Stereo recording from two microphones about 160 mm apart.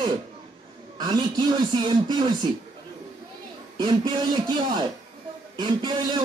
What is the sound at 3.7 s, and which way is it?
A man's voice, 30° right (ahead or behind).